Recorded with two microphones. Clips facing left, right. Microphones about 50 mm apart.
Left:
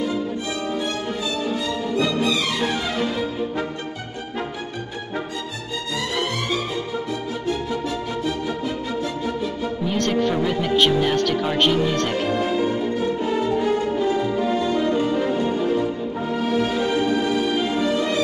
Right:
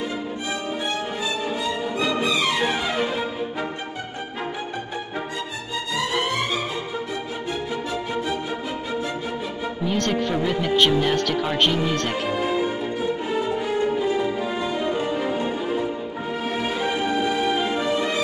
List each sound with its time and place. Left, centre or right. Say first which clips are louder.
1.6 s music: left 2 dB; centre
9.8 s speech: left 2 dB; centre
13.9 s music: left 2 dB; centre
16.8 s music: left 2 dB; centre